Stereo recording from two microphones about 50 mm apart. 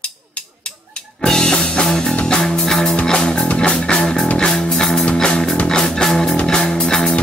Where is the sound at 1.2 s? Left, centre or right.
Centre.